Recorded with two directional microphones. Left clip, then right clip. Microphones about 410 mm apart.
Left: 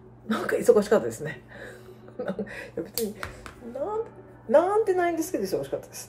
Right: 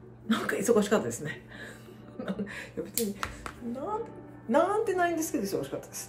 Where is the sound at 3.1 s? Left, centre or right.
Centre.